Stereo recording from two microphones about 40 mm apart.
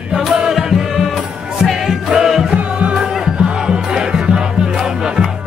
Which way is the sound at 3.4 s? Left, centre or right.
Right.